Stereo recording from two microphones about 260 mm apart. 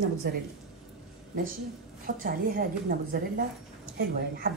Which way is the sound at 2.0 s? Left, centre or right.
Right.